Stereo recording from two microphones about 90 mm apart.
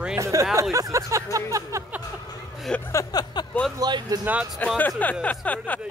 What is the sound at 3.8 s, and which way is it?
Speech, 50° right (ahead or behind).